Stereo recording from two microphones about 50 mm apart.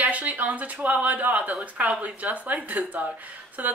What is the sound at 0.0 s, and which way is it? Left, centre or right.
Speech, right.